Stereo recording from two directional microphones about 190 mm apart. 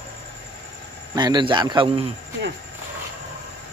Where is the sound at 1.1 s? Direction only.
20° right (ahead or behind).